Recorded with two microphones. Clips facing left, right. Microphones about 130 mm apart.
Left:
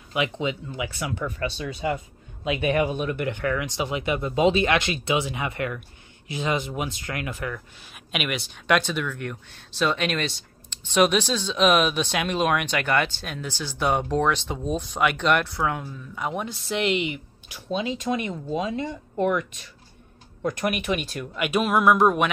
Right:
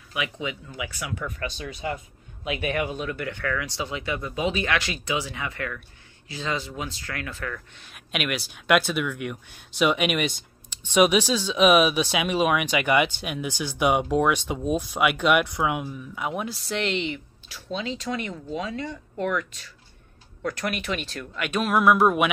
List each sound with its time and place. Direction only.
0.1 s speech: 25° left (ahead or behind)
7.8 s speech: centre (ahead or behind)